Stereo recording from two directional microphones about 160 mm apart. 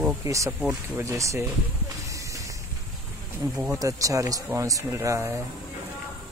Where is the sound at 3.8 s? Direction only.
20° right (ahead or behind).